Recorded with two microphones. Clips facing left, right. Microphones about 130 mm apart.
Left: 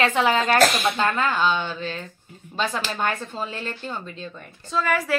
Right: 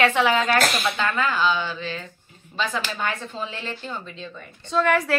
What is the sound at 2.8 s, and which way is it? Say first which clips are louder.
Speech: left 2 dB; 40° left (ahead or behind).